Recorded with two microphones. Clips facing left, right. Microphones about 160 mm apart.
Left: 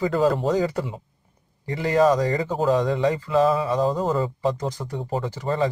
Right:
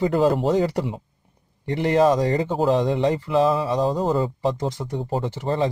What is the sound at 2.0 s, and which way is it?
Speech, 25° right (ahead or behind).